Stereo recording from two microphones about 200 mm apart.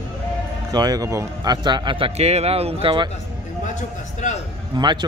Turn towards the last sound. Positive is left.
turn(degrees=-20)  # may be behind; listen again after turning